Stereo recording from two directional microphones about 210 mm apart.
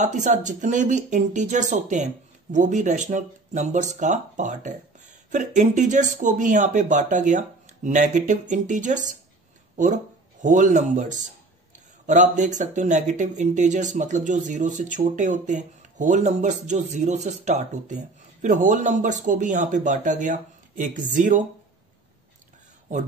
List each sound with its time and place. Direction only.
0.0 s speech: 35° right (ahead or behind)
10.4 s speech: 35° right (ahead or behind)